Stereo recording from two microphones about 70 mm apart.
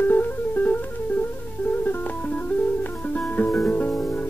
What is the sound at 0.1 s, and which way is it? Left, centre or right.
Music, left.